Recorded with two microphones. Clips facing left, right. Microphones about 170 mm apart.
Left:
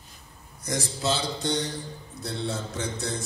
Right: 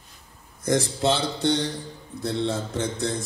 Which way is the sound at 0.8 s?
55° right (ahead or behind).